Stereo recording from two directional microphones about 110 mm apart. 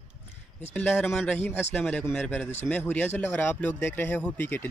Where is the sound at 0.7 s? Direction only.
15° left (ahead or behind).